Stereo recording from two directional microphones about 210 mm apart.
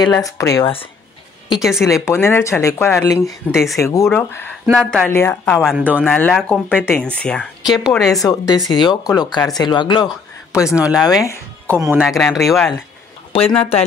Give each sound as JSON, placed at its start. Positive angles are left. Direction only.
{"t": 0.0, "sound": "speech", "side_deg": 15}
{"t": 1.6, "sound": "speech", "side_deg": 0}
{"t": 1.9, "sound": "speech", "side_deg": 15}
{"t": 3.5, "sound": "speech", "side_deg": 0}
{"t": 3.8, "sound": "speech", "side_deg": 15}
{"t": 6.0, "sound": "speech", "side_deg": 5}
{"t": 6.3, "sound": "speech", "side_deg": -5}
{"t": 8.2, "sound": "speech", "side_deg": 15}
{"t": 11.8, "sound": "speech", "side_deg": -10}
{"t": 13.3, "sound": "speech", "side_deg": 25}